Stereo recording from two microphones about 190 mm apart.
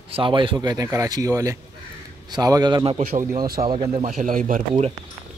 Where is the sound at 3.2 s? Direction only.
15° right (ahead or behind).